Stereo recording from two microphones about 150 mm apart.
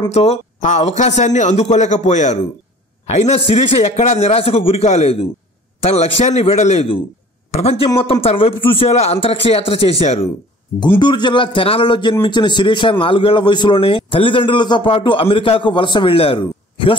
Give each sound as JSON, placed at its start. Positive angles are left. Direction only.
{"t": 0.1, "sound": "a man's voice", "side_deg": 45}
{"t": 11.0, "sound": "a man's voice", "side_deg": 30}